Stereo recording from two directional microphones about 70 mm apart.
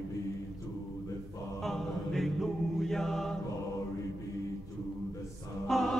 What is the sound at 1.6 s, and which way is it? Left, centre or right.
Choir, centre.